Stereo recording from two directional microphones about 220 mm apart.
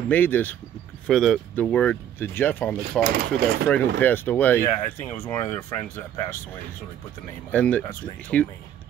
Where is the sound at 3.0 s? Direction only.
45° right (ahead or behind).